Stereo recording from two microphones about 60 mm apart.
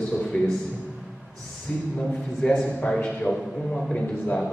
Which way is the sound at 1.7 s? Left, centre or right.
Left.